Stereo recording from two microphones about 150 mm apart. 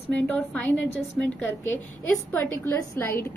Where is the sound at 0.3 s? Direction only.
10° left (ahead or behind).